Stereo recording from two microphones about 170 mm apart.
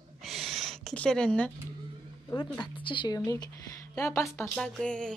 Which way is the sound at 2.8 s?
25° left (ahead or behind).